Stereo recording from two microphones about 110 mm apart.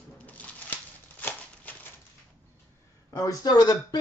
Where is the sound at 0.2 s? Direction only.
15° left (ahead or behind).